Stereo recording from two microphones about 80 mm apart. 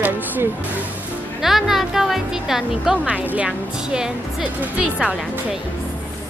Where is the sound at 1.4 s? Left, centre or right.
Centre.